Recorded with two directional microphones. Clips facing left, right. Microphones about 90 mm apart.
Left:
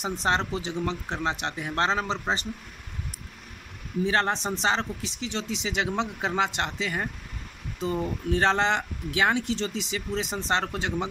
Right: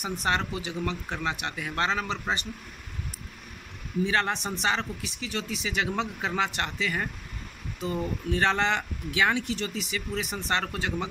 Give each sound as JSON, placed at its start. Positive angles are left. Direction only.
{"t": 0.0, "sound": "speech", "side_deg": 30}
{"t": 4.0, "sound": "speech", "side_deg": 35}